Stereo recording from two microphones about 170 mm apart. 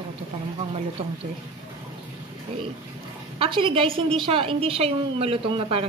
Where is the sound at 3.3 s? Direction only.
30° right (ahead or behind).